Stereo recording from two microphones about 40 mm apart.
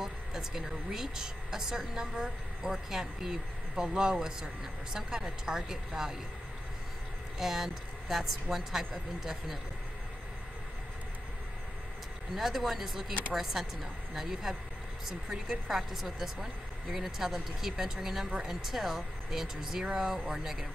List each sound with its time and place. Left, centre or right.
0.0 s a woman's voice: centre
7.3 s a woman's voice: centre
12.4 s a woman's voice: centre
18.5 s a woman's voice: centre